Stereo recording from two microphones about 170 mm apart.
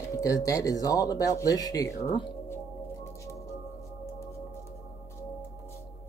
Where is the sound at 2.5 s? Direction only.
15° left (ahead or behind).